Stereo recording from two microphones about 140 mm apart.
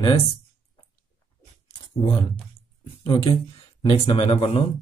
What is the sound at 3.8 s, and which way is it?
Speech, 30° left (ahead or behind).